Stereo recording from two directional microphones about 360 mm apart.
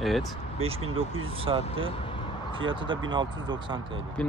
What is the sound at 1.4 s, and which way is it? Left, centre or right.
Speech, centre.